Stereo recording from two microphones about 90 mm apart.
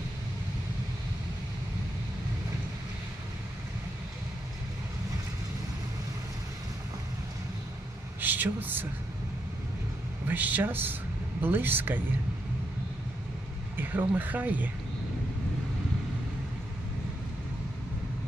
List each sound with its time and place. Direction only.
8.2 s speech: 20° right (ahead or behind)
10.2 s speech: 20° right (ahead or behind)
13.7 s speech: 20° right (ahead or behind)